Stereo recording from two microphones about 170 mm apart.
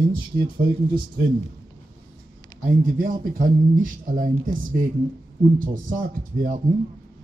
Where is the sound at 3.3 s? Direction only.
55° right (ahead or behind).